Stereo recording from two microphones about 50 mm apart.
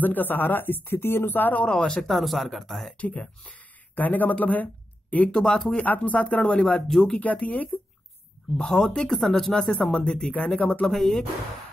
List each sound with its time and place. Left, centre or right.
0.0 s speech: left
1.6 s speech: centre
2.0 s speech: centre
3.0 s speech: left
5.3 s speech: centre
5.8 s speech: left
6.4 s speech: left
6.9 s speech: centre
7.2 s speech: left
8.6 s speech: centre; by 10.7 s left
10.9 s speech: centre